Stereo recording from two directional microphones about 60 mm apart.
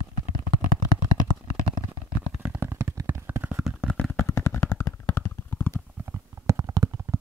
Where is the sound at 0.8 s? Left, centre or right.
Left.